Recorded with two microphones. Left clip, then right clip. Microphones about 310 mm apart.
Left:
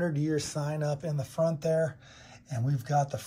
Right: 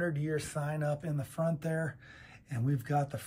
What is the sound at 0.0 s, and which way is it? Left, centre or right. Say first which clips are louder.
Speech: left 4 dB; centre.